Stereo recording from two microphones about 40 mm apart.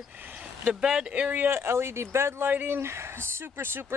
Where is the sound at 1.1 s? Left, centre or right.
Right.